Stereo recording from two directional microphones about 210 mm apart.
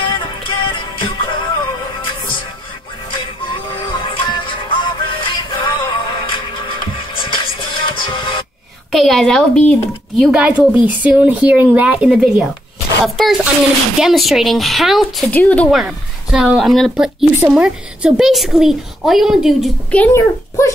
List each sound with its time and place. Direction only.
0.0 s music: 25° left (ahead or behind)
3.1 s music: 25° left (ahead or behind)
8.9 s speech: centre (ahead or behind)